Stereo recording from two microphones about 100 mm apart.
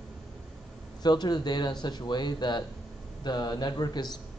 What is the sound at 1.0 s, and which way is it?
Speech, 45° left (ahead or behind).